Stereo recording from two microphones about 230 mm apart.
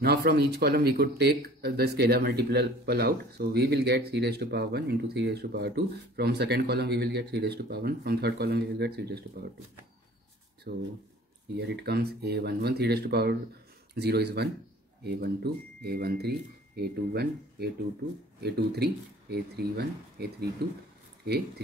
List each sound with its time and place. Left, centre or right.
0.0 s speech: right
10.7 s speech: right